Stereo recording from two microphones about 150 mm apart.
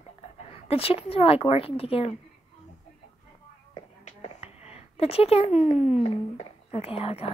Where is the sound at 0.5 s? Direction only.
40° left (ahead or behind).